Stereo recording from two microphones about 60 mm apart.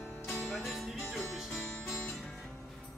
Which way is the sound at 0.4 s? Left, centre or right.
Centre.